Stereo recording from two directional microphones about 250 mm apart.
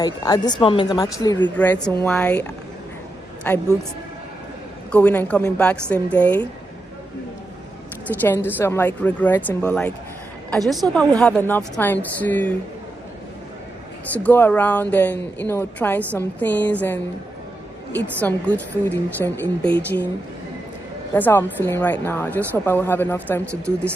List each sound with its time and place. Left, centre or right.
0.0 s a woman's voice: centre
3.4 s a woman's voice: centre
4.9 s a woman's voice: centre
8.1 s a woman's voice: centre
14.1 s a woman's voice: centre
18.2 s a woman's voice: centre
21.1 s a woman's voice: centre